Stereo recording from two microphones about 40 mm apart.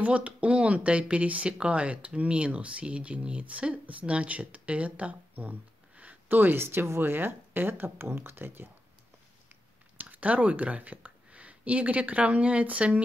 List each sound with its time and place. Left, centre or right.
0.0 s speech: right
5.4 s a sound: right
6.2 s speech: right
9.9 s speech: right